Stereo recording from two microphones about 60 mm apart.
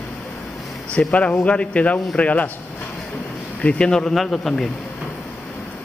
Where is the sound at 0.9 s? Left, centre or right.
Left.